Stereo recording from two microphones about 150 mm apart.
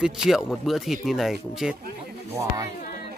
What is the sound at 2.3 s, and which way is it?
Speech, 20° right (ahead or behind).